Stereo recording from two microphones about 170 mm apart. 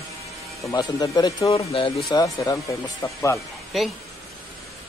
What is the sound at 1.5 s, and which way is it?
Speech, 35° left (ahead or behind).